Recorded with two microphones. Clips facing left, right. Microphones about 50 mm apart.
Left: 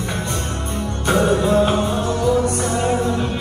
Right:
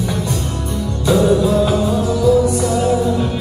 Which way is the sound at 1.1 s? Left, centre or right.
Left.